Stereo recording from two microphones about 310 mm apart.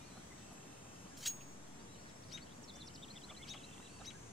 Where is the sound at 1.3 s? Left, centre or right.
Centre.